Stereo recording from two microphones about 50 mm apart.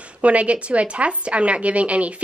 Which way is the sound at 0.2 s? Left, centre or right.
Right.